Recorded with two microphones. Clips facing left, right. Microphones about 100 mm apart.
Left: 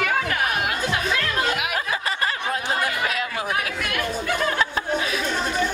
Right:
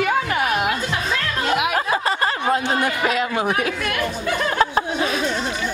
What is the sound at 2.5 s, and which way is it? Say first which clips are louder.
Speech: right 4 dB; 25° right (ahead or behind).